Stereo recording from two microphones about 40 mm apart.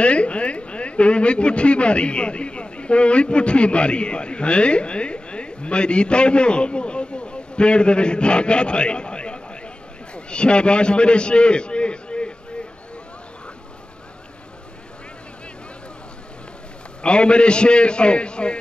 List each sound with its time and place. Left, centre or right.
0.0 s a woman's voice: left
17.0 s a woman's voice: left